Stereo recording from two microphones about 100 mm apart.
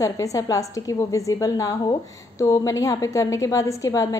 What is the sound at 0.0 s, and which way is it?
A woman's voice, 35° left (ahead or behind).